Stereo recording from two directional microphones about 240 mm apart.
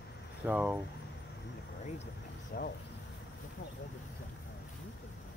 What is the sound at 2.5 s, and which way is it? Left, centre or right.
Speech, left.